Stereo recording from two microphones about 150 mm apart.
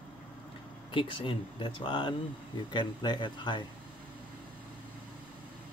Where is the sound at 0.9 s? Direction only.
35° left (ahead or behind).